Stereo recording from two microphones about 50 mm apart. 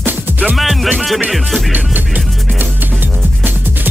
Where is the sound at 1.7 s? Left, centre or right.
Right.